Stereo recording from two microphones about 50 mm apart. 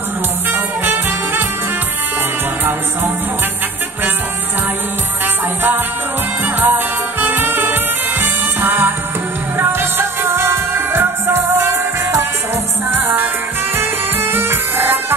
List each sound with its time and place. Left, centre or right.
0.5 s music: right
6.4 s music: right